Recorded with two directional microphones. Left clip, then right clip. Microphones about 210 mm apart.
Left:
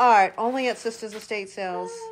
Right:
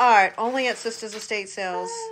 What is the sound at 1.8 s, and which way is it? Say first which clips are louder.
Speech: right 3 dB; 20° right (ahead or behind).